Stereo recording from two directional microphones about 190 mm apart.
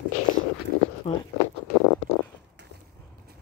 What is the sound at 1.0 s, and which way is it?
Speech, 30° left (ahead or behind).